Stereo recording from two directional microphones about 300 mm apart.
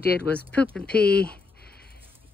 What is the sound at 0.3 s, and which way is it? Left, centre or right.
Speech, centre.